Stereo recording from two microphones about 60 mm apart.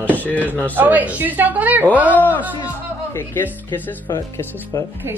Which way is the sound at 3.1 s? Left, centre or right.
Left.